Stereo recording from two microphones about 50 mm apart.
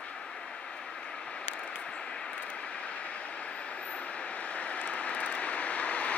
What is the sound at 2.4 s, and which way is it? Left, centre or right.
Vehicle, left.